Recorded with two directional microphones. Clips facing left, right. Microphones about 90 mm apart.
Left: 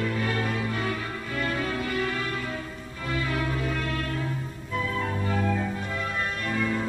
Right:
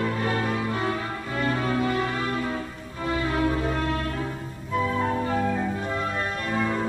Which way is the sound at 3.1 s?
30° right (ahead or behind).